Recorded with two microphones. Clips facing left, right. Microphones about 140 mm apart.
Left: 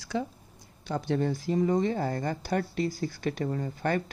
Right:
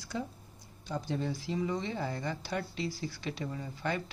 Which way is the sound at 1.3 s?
45° left (ahead or behind).